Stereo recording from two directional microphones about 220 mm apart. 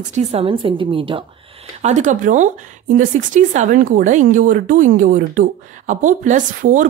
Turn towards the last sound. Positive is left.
turn(degrees=-35)  # may be behind; listen again after turning